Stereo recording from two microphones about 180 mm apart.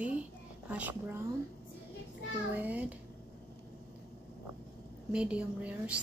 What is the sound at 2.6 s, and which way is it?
Speech, 10° right (ahead or behind).